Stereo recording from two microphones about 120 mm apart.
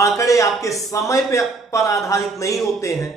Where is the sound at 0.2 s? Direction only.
25° left (ahead or behind).